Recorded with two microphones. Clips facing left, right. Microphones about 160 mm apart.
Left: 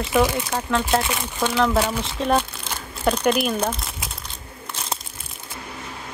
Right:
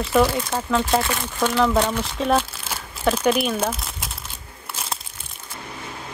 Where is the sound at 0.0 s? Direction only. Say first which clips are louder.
Right 1 dB; 5° left (ahead or behind).